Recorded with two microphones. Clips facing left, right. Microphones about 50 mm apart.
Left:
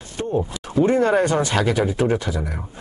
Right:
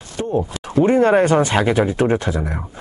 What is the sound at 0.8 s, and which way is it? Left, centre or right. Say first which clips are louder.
Speech: right 3 dB; right.